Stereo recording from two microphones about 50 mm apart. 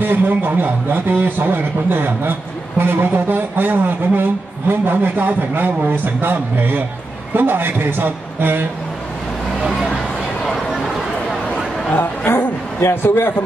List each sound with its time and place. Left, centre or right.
0.0 s a man's voice: right
9.6 s speech: centre
12.3 s a sound: left